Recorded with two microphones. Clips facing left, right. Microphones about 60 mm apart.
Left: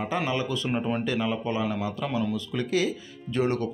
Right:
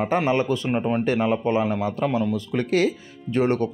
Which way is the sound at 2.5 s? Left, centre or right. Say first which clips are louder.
Right 5 dB; right.